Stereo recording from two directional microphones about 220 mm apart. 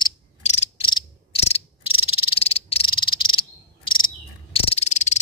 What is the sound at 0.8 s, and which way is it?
Cricket, 20° left (ahead or behind).